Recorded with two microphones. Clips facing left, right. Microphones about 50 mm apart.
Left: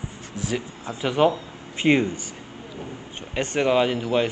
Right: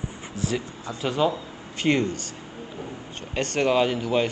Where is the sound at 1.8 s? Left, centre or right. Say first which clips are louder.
Left 3 dB; centre.